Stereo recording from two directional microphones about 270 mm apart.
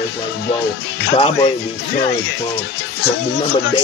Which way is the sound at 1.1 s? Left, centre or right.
Left.